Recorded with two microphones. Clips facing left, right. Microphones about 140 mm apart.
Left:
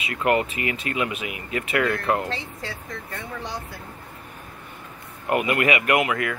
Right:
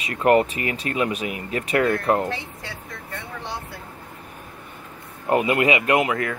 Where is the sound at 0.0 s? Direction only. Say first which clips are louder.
Right 4 dB; 40° right (ahead or behind).